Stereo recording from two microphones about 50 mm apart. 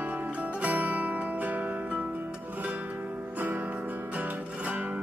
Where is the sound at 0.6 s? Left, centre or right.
Right.